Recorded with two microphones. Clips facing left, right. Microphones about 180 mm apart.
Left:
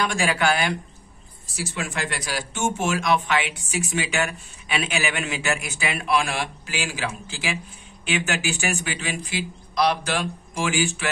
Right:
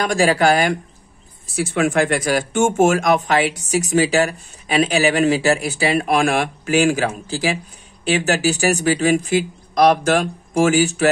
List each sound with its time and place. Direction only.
0.0 s speech: 40° right (ahead or behind)
1.5 s speech: 55° right (ahead or behind); by 11.1 s 40° right (ahead or behind)